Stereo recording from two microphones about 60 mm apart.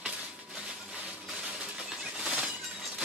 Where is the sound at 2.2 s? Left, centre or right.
Centre.